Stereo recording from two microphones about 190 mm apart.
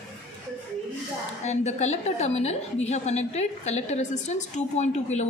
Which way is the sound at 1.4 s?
35° left (ahead or behind).